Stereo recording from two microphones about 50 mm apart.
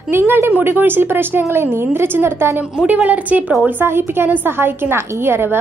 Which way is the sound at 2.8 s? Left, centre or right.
Right.